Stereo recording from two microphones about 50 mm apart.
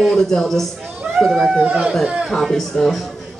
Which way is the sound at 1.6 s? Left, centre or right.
Right.